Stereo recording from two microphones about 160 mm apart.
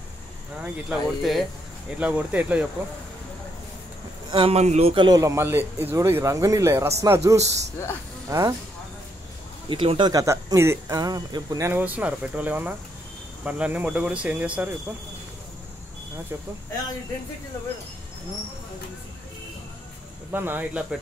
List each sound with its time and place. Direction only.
0.6 s speech: centre (ahead or behind)
4.3 s a man's voice: 35° right (ahead or behind)
9.7 s speech: 30° right (ahead or behind); by 15.0 s 10° right (ahead or behind)
20.2 s speech: 15° right (ahead or behind)